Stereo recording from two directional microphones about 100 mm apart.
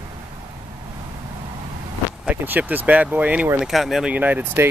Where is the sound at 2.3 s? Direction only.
15° right (ahead or behind).